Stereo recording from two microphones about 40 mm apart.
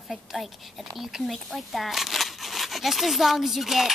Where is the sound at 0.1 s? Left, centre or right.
Centre.